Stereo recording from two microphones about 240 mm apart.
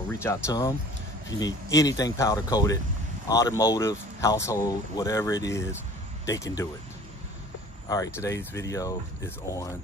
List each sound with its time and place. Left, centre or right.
0.2 s speech: centre
7.9 s speech: centre